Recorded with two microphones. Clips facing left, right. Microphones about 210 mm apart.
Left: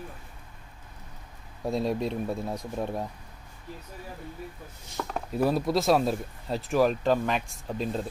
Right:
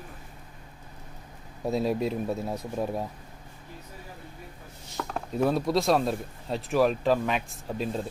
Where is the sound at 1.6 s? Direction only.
5° right (ahead or behind).